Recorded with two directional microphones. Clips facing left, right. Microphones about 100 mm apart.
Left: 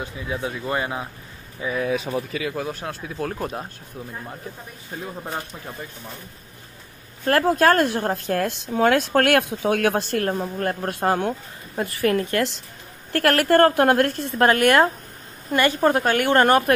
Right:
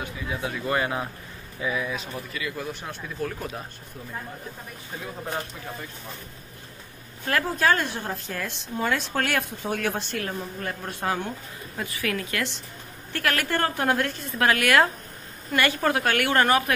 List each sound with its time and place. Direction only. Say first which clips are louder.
0.0 s speech: left 3 dB; 25° left (ahead or behind)
1.9 s speech: left 9 dB; 80° left
2.8 s a woman's voice: left 3 dB; 50° left (ahead or behind)
7.4 s a woman's voice: left 6 dB; 55° left (ahead or behind)
9.9 s a woman's voice: left 8 dB; 45° left (ahead or behind)
12.0 s a woman's voice: left 8 dB; 35° left (ahead or behind)
13.1 s a woman's voice: left 9 dB; 50° left (ahead or behind)
14.4 s a woman's voice: left 4 dB; 35° left (ahead or behind)
16.3 s a woman's voice: left 6 dB; 40° left (ahead or behind)